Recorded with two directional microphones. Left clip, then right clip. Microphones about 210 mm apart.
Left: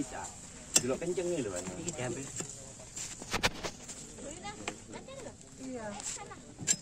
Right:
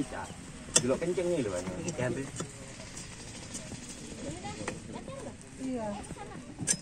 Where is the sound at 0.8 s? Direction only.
25° left (ahead or behind).